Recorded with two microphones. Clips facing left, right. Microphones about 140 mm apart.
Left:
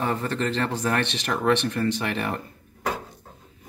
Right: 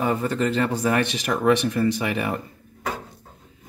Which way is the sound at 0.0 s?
10° right (ahead or behind).